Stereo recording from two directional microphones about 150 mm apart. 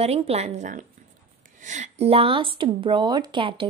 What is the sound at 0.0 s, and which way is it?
A woman's voice, 45° right (ahead or behind).